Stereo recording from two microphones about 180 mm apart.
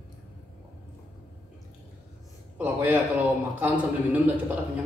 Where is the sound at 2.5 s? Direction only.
10° right (ahead or behind).